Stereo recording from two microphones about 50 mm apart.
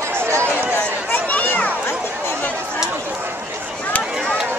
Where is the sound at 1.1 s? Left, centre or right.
Left.